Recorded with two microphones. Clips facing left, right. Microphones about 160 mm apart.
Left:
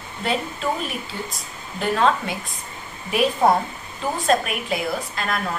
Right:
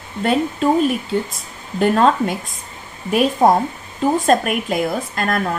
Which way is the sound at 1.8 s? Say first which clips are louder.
Right 6 dB; 45° right (ahead or behind).